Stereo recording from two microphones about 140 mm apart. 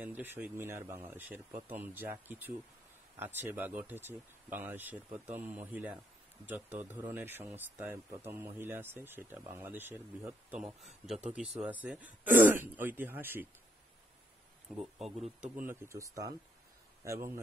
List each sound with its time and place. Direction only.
0.0 s speech: 15° right (ahead or behind)
10.6 s speech: centre (ahead or behind)
14.7 s speech: centre (ahead or behind)
15.4 s a man's voice: 15° right (ahead or behind)